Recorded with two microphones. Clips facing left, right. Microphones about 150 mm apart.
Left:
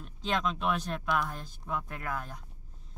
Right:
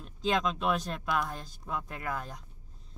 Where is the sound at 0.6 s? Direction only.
Centre (ahead or behind).